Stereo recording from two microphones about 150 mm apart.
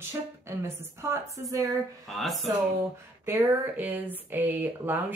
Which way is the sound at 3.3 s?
10° right (ahead or behind).